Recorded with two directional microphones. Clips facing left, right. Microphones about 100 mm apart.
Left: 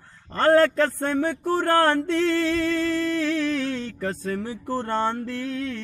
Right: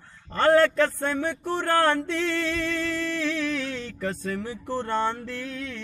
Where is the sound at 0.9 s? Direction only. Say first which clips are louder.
Left 3 dB; 40° left (ahead or behind).